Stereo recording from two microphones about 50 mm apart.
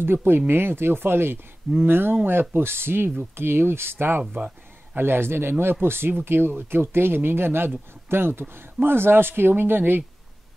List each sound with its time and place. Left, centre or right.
0.0 s speech: right